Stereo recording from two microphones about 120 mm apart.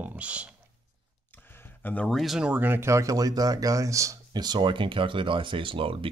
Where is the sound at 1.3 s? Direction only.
20° left (ahead or behind).